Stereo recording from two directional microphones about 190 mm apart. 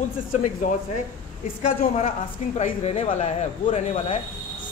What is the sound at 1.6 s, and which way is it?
Speech, 35° left (ahead or behind).